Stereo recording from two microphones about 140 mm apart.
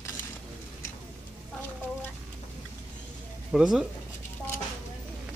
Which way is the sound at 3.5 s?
5° right (ahead or behind).